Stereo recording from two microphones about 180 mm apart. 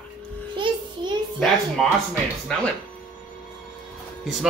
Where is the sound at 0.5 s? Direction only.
25° right (ahead or behind).